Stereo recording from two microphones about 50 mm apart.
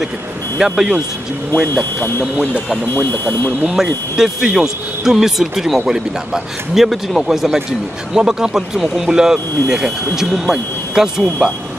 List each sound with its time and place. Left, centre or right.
0.6 s speech: centre
2.9 s speech: left
3.6 s a man's voice: centre